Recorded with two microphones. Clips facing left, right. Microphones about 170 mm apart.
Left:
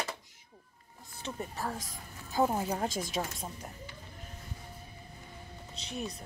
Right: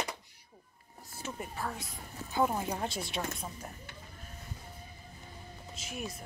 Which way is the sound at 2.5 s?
30° left (ahead or behind).